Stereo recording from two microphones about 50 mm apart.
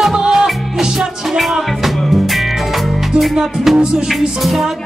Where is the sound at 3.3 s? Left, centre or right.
Centre.